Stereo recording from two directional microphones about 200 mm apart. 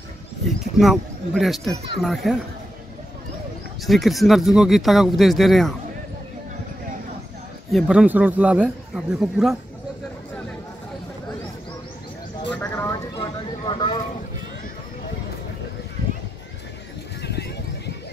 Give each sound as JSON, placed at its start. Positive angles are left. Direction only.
{"t": 0.7, "sound": "speech", "side_deg": 0}
{"t": 3.8, "sound": "speech", "side_deg": 0}
{"t": 7.7, "sound": "speech", "side_deg": -5}
{"t": 12.6, "sound": "vehicle", "side_deg": 15}
{"t": 13.2, "sound": "a sound", "side_deg": 25}
{"t": 17.2, "sound": "horse", "side_deg": 55}